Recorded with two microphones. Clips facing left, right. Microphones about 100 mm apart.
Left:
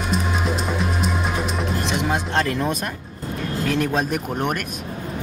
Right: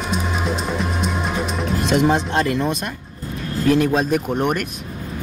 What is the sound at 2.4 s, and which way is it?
Speech, centre (ahead or behind).